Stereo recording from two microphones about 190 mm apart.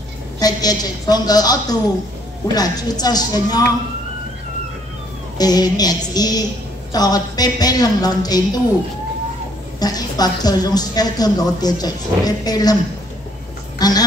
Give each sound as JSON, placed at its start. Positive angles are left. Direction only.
{"t": 0.4, "sound": "a woman's voice", "side_deg": 20}
{"t": 5.4, "sound": "a woman's voice", "side_deg": 20}
{"t": 9.8, "sound": "a woman's voice", "side_deg": 20}
{"t": 13.7, "sound": "speech", "side_deg": 20}